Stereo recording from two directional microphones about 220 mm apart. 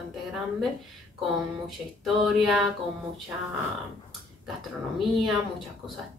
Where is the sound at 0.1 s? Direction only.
Centre (ahead or behind).